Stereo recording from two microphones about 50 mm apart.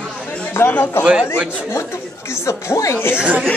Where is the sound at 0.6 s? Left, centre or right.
Left.